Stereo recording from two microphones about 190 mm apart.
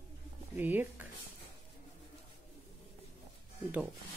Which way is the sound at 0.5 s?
10° right (ahead or behind).